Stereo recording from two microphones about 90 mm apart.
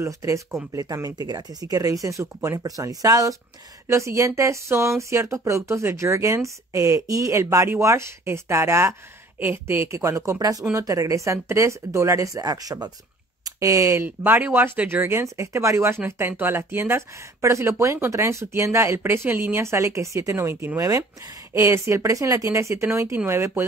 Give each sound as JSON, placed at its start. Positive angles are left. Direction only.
{"t": 0.0, "sound": "speech", "side_deg": -35}
{"t": 14.0, "sound": "speech", "side_deg": -20}